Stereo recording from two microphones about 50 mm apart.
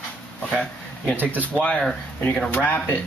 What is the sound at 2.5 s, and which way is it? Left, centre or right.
Speech, left.